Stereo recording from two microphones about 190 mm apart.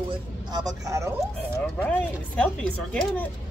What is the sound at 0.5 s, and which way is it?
Speech, 20° right (ahead or behind).